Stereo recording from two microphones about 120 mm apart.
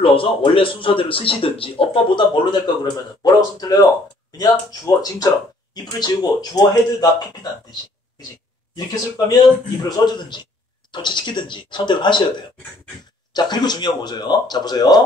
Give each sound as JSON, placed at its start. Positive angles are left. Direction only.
{"t": 0.0, "sound": "a man's voice", "side_deg": 50}
{"t": 9.8, "sound": "a man's voice", "side_deg": 35}